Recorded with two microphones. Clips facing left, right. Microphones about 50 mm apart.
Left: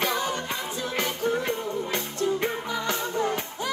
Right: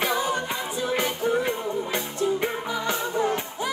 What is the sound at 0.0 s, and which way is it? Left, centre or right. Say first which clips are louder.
Music: right 2 dB; centre.